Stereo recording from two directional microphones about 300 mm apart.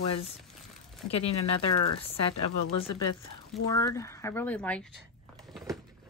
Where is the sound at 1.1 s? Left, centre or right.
Centre.